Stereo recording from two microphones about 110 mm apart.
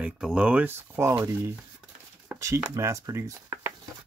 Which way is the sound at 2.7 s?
25° right (ahead or behind).